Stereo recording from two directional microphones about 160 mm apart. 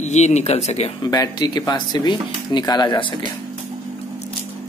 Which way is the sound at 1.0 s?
25° left (ahead or behind).